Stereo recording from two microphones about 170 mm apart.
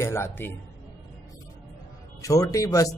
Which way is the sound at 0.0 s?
15° left (ahead or behind).